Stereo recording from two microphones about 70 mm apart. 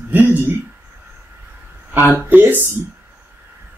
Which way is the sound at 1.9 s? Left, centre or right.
Right.